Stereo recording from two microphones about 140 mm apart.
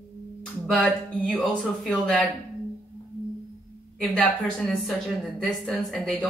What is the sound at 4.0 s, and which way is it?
Speech, 5° left (ahead or behind).